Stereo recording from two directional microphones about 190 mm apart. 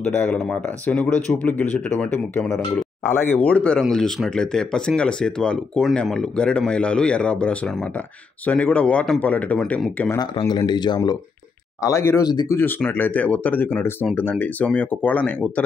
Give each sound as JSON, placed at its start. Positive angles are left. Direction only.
{"t": 0.0, "sound": "speech", "side_deg": 5}
{"t": 10.1, "sound": "speech", "side_deg": 20}